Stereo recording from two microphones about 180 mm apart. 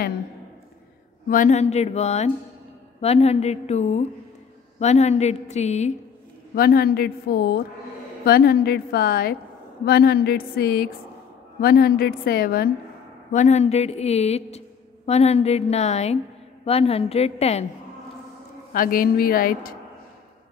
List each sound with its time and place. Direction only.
1.3 s a woman's voice: 45° left (ahead or behind)
6.5 s a woman's voice: 55° left (ahead or behind)
13.3 s a woman's voice: 40° left (ahead or behind)
18.7 s a woman's voice: 50° left (ahead or behind)